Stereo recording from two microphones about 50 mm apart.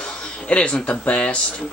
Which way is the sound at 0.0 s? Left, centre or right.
Centre.